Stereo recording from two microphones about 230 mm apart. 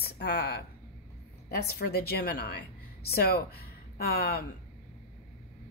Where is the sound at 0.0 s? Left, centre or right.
Left.